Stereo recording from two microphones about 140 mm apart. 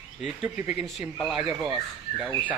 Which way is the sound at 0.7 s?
5° right (ahead or behind).